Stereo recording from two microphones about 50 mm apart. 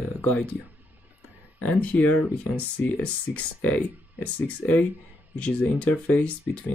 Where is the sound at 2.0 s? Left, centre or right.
Left.